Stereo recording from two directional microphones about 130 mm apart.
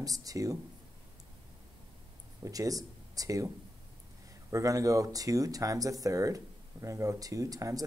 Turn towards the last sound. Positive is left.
turn(degrees=-25)  # may be behind; listen again after turning